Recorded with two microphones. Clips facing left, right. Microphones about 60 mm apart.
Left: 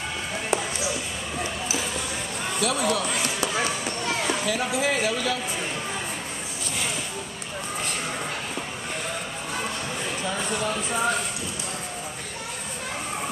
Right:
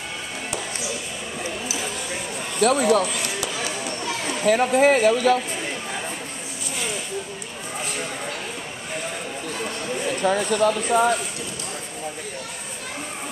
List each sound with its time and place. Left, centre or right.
2.6 s speech: right
3.1 s run: left
4.5 s speech: right
10.2 s speech: right